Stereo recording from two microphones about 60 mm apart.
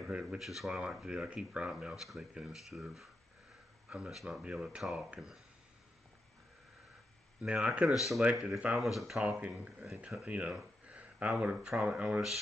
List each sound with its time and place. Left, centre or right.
0.1 s speech: centre
0.4 s speech: centre
3.9 s speech: centre
7.4 s speech: centre
7.8 s speech: centre
8.2 s speech: centre
8.7 s speech: centre
10.2 s speech: right
10.9 s a sound: right
11.2 s speech: centre